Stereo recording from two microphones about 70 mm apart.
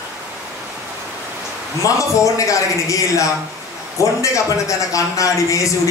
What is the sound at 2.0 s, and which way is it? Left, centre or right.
A man's voice, left.